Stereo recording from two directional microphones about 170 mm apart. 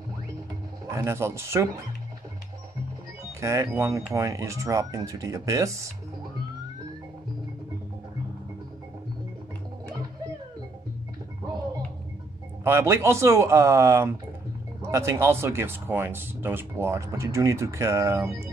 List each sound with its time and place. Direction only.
0.9 s speech: 15° right (ahead or behind)
3.3 s speech: 15° right (ahead or behind)
12.6 s speech: 15° right (ahead or behind)